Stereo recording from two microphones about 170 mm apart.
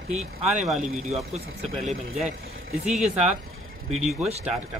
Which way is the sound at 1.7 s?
Centre (ahead or behind).